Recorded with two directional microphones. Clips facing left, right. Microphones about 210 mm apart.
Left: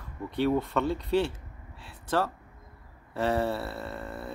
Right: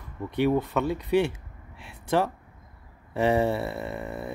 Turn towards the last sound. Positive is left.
turn(degrees=-15)  # may be behind; listen again after turning